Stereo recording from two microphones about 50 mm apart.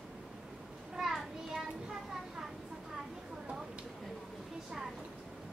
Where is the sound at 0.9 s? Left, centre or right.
Centre.